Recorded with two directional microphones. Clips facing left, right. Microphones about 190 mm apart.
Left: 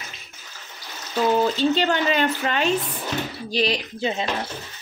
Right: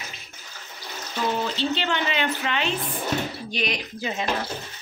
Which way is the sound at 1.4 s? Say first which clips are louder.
Left 6 dB; 40° left (ahead or behind).